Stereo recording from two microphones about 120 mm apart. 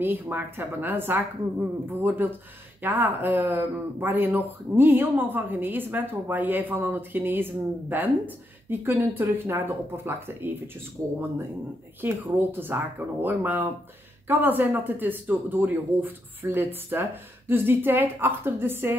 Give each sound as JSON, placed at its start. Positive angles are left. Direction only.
{"t": 0.0, "sound": "speech", "side_deg": -15}
{"t": 12.0, "sound": "speech", "side_deg": -20}